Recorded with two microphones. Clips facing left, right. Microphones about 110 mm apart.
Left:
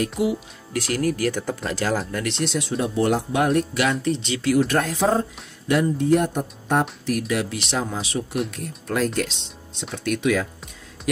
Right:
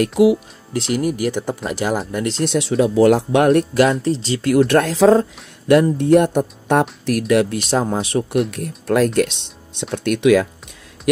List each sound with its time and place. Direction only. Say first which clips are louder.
0.0 s speech: right 9 dB; 90° right
0.7 s speech: right 3 dB; 20° right (ahead or behind)
2.4 s speech: right 7 dB; 60° right (ahead or behind)
2.8 s speech: right 9 dB; 90° right
4.0 s speech: right 4 dB; 35° right (ahead or behind)
4.6 s speech: right 8 dB; 80° right
5.7 s speech: right 6 dB; 65° right (ahead or behind)
7.7 s speech: right 7 dB; 45° right (ahead or behind); by 10.5 s 65° right (ahead or behind)